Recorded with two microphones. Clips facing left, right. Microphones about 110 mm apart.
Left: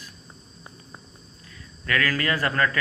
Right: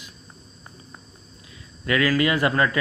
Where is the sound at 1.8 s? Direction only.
15° right (ahead or behind).